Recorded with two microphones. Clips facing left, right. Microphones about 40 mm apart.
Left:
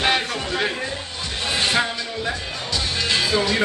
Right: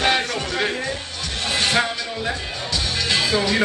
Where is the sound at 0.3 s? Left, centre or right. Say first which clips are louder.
Even; left.